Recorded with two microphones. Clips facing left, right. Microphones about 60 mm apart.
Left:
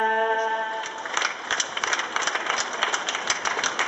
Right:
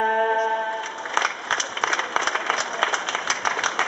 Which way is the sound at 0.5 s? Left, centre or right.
Centre.